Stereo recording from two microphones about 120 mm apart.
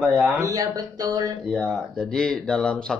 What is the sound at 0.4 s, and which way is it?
Speech, 30° right (ahead or behind).